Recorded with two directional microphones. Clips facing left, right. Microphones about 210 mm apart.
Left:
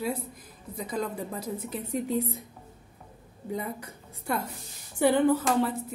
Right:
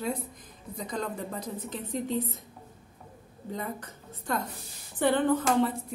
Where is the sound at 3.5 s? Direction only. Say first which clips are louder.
Left 2 dB; 10° left (ahead or behind).